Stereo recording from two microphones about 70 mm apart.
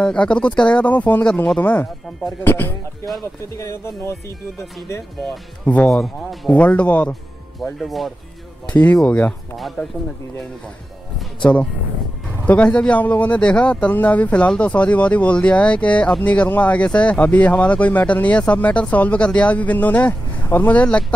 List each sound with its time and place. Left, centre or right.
0.0 s speech: centre
1.6 s speech: left
3.5 s speech: left
5.9 s speech: centre
6.5 s speech: left
7.8 s speech: centre
8.7 s speech: centre
12.4 s speech: centre